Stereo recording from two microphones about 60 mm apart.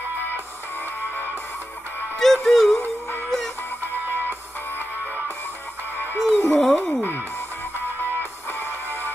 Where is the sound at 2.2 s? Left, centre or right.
Centre.